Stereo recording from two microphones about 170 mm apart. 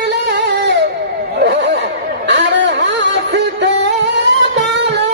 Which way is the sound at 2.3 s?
90° right.